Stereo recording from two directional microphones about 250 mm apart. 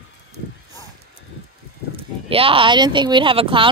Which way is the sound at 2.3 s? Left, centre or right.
Right.